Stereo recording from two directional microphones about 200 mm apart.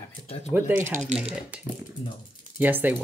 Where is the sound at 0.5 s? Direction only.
10° right (ahead or behind).